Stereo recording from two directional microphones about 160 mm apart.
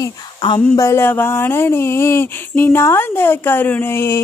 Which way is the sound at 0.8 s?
15° left (ahead or behind).